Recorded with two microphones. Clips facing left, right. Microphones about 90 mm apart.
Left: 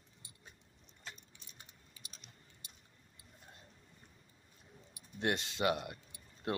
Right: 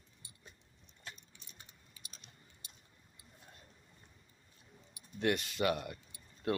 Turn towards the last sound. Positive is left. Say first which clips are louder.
# right 3 dB
turn(degrees=25)  # may be behind; listen again after turning